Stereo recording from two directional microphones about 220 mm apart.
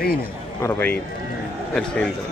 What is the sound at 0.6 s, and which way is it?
A man's voice, 10° left (ahead or behind).